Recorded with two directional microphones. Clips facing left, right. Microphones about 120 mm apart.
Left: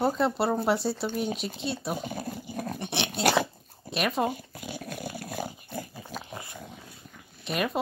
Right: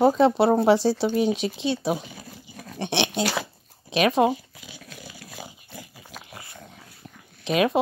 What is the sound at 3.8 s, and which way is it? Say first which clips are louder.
Speech: right 7 dB; 90° right.